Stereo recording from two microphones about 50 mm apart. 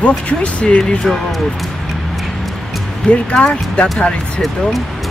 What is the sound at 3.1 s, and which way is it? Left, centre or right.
Speech, left.